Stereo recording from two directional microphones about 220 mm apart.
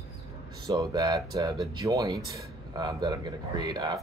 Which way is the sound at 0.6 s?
20° right (ahead or behind).